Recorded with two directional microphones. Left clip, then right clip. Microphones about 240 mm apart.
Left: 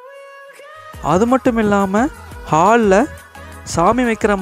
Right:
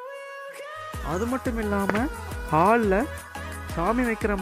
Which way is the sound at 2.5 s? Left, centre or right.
Left.